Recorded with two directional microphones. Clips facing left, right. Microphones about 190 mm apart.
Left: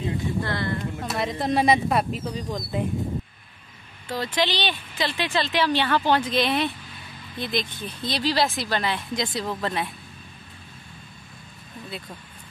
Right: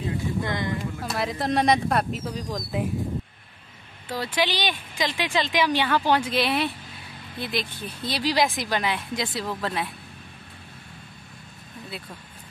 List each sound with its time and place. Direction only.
0.4 s a sound: 15° right (ahead or behind)
1.0 s speech: centre (ahead or behind)
4.1 s speech: 10° right (ahead or behind)
11.9 s speech: 5° right (ahead or behind)